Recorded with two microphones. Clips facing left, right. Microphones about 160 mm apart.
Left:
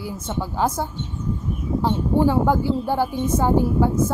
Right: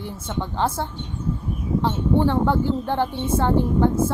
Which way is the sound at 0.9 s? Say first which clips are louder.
Left 1 dB; 10° right (ahead or behind).